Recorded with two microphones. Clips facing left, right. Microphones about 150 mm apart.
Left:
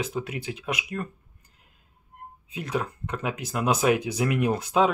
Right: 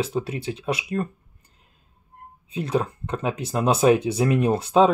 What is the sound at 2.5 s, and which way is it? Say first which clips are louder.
Speech: right 5 dB; 30° right (ahead or behind).